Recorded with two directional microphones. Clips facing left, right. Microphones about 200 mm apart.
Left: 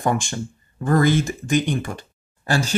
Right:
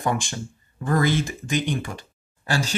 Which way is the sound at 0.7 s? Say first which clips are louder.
Left 4 dB; 45° left (ahead or behind).